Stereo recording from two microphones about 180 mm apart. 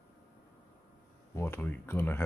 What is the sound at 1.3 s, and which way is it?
Speech, 10° left (ahead or behind).